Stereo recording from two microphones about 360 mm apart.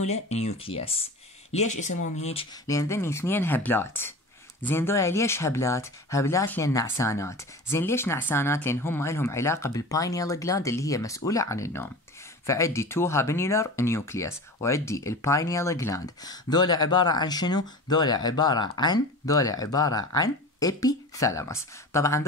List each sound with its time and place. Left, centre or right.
0.0 s speech: centre